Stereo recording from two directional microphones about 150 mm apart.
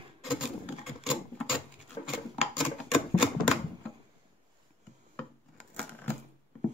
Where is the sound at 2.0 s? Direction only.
Centre (ahead or behind).